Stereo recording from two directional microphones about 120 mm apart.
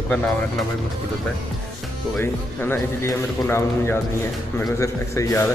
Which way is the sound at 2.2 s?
20° left (ahead or behind).